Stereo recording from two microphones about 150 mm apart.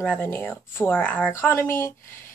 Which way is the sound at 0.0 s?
10° left (ahead or behind).